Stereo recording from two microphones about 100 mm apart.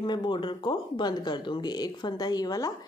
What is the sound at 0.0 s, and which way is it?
Speech, 50° left (ahead or behind).